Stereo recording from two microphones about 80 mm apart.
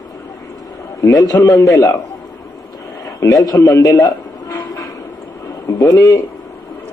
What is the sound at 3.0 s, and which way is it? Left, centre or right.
Television, left.